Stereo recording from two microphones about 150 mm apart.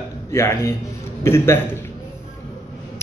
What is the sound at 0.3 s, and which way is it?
Speech, 20° left (ahead or behind).